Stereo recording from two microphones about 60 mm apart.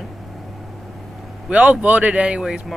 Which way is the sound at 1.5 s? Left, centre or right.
Right.